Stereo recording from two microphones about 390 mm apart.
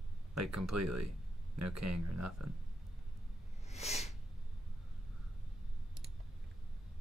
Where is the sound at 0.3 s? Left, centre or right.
Right.